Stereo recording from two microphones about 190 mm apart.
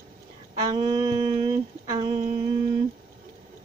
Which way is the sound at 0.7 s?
20° right (ahead or behind).